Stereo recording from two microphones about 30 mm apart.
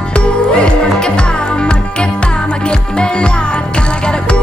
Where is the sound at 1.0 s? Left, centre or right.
Left.